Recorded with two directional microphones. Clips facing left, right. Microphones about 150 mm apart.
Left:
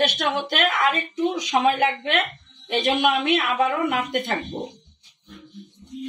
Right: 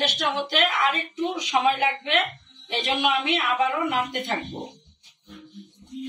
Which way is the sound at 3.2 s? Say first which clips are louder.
Left 3 dB; 55° left (ahead or behind).